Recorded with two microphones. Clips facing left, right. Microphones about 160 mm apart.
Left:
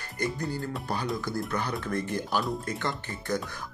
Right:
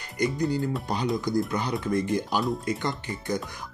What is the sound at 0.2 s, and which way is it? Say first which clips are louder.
Speech: right 6 dB; 20° right (ahead or behind).